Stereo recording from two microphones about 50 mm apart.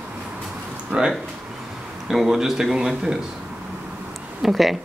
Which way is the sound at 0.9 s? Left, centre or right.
Centre.